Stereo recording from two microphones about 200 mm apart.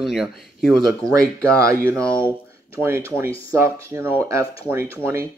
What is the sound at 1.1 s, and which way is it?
Speech, 15° right (ahead or behind).